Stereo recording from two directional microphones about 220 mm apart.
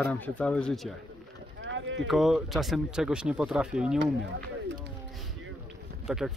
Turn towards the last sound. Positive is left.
turn(degrees=0)  # may be behind; listen again after turning